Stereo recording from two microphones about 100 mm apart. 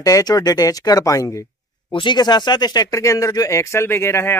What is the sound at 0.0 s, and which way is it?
Speech, 40° left (ahead or behind).